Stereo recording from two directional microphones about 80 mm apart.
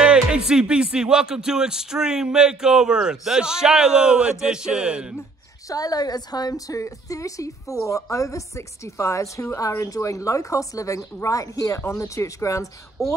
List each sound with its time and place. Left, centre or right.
0.0 s speech: centre
5.7 s a woman's voice: left